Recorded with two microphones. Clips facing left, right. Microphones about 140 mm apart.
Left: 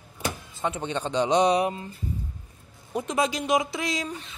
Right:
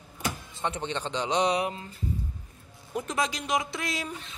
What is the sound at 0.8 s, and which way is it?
Speech, 15° left (ahead or behind).